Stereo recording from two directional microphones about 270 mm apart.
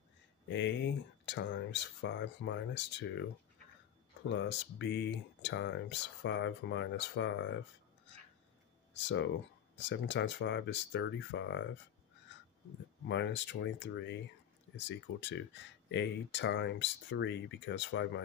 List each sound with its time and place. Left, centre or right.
0.5 s speech: left
4.3 s speech: left
8.9 s speech: left
13.1 s speech: left